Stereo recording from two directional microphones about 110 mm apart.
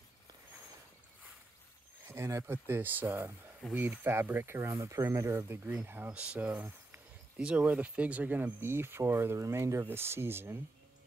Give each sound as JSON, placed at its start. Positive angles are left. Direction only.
{"t": 2.0, "sound": "speech", "side_deg": -25}